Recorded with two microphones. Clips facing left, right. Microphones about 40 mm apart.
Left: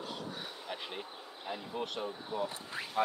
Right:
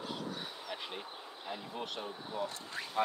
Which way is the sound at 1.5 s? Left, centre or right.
Centre.